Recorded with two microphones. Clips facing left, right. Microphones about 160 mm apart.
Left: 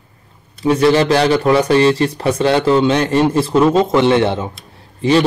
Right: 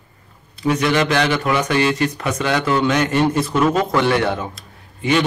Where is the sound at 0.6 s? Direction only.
30° left (ahead or behind).